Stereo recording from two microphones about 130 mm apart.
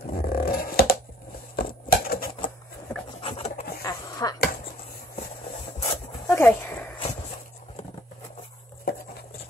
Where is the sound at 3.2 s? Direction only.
45° left (ahead or behind).